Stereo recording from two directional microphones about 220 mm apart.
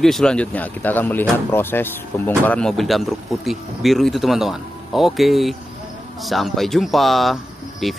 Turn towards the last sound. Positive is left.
turn(degrees=0)  # may be behind; listen again after turning